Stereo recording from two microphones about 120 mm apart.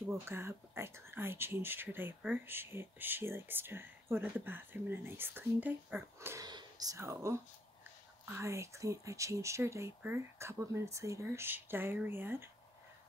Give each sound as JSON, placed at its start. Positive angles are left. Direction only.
{"t": 0.1, "sound": "speech", "side_deg": -20}
{"t": 6.1, "sound": "speech", "side_deg": -25}